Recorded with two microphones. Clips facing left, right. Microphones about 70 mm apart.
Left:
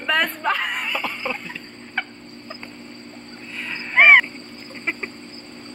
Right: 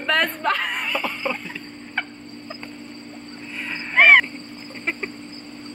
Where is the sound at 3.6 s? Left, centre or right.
Centre.